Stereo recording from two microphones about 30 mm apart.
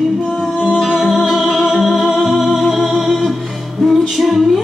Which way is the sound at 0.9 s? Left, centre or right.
Centre.